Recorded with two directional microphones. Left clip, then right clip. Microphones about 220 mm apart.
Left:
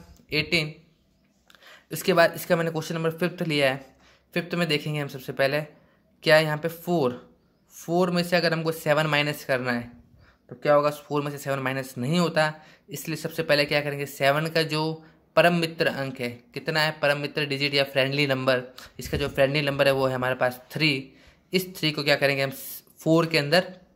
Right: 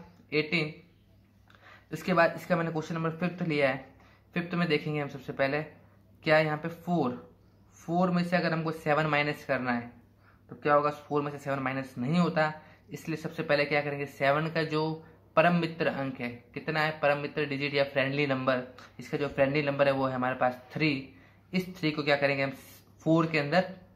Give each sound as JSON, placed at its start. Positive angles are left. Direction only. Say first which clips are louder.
{"t": 0.3, "sound": "speech", "louder": "left 4 dB", "side_deg": 45}
{"t": 1.7, "sound": "speech", "louder": "left 7 dB", "side_deg": 45}